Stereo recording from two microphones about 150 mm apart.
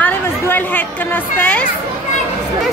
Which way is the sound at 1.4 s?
10° left (ahead or behind).